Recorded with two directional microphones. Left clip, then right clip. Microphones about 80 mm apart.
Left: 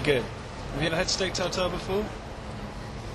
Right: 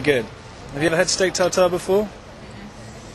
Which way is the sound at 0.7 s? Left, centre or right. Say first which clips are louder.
Right 8 dB; right.